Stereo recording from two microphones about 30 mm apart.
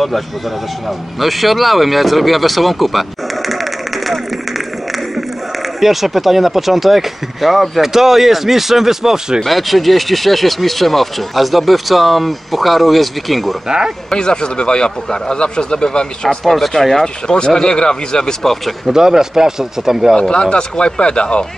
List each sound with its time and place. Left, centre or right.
1.2 s speech: centre
5.8 s speech: centre
7.8 s speech: centre
9.4 s speech: centre
13.7 s speech: right
14.1 s a man's voice: left
16.4 s speech: centre
17.6 s a man's voice: left
18.9 s speech: centre
20.2 s speech: left